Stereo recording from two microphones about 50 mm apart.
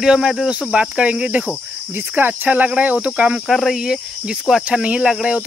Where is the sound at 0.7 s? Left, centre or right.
Right.